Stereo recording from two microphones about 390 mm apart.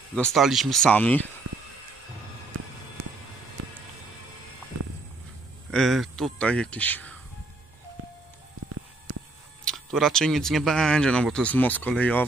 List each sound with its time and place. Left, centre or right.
0.1 s speech: centre
5.7 s speech: centre
9.7 s speech: centre